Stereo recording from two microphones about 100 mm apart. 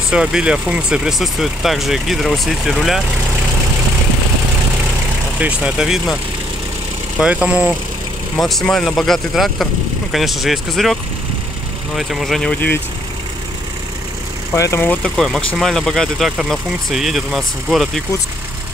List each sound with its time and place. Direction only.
0.1 s speech: 10° right (ahead or behind)
5.4 s speech: 15° right (ahead or behind)
7.2 s speech: 10° right (ahead or behind)
8.4 s speech: centre (ahead or behind)
12.4 s speech: 20° left (ahead or behind)
14.5 s speech: 30° left (ahead or behind)
15.1 s speech: 5° left (ahead or behind)